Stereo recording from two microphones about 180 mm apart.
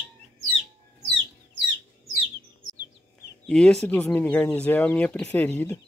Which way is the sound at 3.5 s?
5° left (ahead or behind).